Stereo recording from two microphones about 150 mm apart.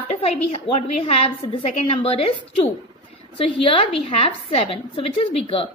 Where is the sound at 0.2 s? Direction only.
45° left (ahead or behind).